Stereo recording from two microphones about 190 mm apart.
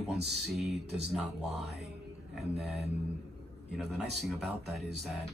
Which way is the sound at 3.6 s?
Centre (ahead or behind).